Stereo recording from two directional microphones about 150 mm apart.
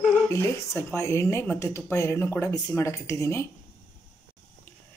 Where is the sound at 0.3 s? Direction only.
15° left (ahead or behind).